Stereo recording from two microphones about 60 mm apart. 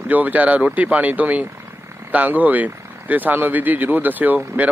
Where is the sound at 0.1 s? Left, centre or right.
Right.